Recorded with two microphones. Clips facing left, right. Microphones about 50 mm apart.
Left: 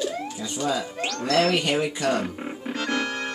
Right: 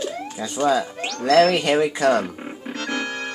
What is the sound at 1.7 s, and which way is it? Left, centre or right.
Speech, right.